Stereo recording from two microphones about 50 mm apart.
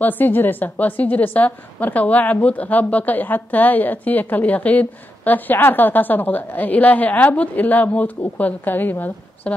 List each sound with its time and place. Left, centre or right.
0.0 s a woman's voice: left